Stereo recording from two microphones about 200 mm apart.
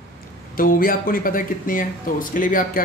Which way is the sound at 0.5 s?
45° left (ahead or behind).